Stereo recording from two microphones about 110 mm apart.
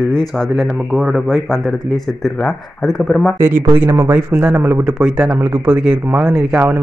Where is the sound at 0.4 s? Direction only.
Centre (ahead or behind).